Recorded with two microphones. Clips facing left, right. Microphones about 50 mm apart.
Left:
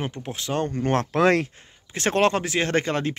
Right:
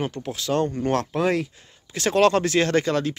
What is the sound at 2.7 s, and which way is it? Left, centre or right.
Speech, left.